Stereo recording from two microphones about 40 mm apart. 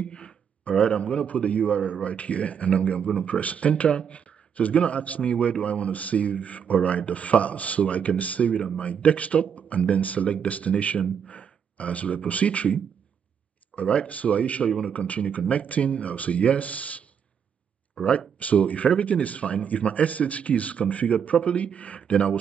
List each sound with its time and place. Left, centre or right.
0.1 s speech: left